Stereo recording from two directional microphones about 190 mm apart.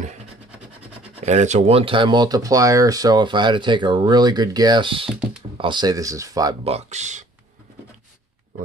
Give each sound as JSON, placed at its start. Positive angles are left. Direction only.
{"t": 1.2, "sound": "speech", "side_deg": -40}
{"t": 5.1, "sound": "typing", "side_deg": -5}
{"t": 5.6, "sound": "speech", "side_deg": -25}
{"t": 6.6, "sound": "speech", "side_deg": -35}